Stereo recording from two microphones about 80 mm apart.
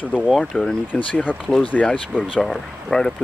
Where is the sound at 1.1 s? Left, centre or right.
Left.